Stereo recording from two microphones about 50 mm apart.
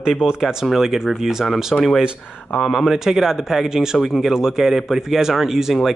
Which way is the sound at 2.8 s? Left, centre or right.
Centre.